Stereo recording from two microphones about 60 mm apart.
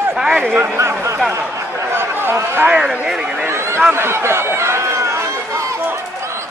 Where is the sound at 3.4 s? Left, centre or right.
Right.